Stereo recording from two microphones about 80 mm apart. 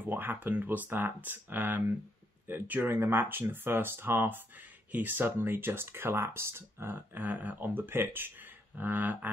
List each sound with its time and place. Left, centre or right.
0.0 s speech: right